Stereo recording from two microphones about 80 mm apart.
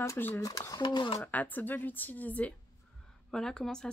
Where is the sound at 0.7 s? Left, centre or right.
Left.